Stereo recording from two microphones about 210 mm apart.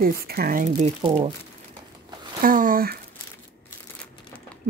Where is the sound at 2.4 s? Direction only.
40° right (ahead or behind).